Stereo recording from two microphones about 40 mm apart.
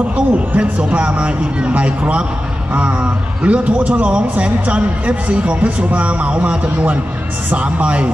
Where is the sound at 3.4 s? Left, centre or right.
Right.